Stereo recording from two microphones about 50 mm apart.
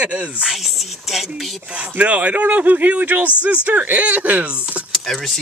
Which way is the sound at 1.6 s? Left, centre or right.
Right.